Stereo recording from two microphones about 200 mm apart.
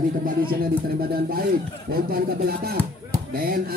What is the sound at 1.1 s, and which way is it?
Speech, 50° right (ahead or behind).